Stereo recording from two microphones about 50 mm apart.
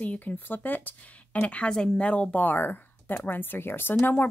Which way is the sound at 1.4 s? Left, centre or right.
Left.